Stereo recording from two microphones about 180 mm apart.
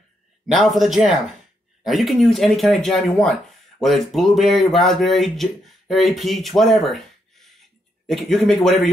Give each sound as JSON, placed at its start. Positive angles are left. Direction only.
{"t": 0.5, "sound": "speech", "side_deg": 0}